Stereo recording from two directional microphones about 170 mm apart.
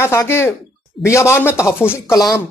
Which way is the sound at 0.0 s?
15° left (ahead or behind).